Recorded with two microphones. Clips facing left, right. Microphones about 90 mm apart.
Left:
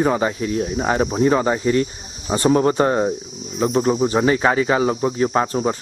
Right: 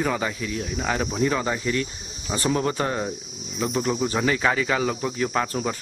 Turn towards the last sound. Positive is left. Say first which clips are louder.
# left 6 dB
turn(degrees=30)  # may be behind; listen again after turning